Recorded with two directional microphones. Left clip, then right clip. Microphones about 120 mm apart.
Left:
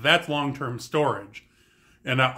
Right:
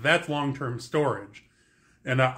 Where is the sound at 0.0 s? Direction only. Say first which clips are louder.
Left 2 dB; 20° left (ahead or behind).